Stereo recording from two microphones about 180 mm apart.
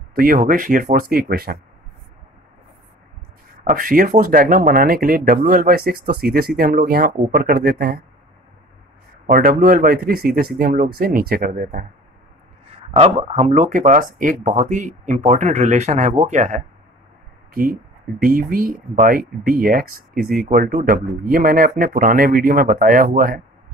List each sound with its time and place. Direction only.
0.1 s speech: 50° right (ahead or behind)
3.6 s speech: 50° right (ahead or behind)
9.3 s speech: 55° right (ahead or behind)
12.9 s speech: 35° right (ahead or behind)
18.2 s speech: 55° right (ahead or behind)